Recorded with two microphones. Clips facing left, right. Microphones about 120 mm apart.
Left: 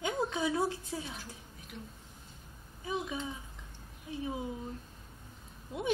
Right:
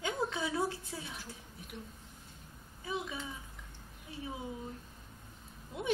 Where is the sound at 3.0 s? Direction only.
20° left (ahead or behind).